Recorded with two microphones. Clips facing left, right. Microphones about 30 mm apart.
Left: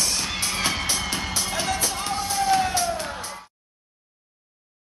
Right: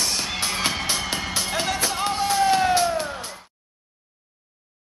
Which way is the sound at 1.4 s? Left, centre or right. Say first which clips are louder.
Right 3 dB; centre.